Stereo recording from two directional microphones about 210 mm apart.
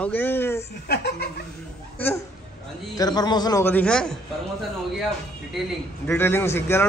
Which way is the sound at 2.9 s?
20° left (ahead or behind).